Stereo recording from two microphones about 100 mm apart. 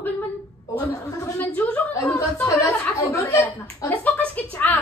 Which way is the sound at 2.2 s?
30° left (ahead or behind).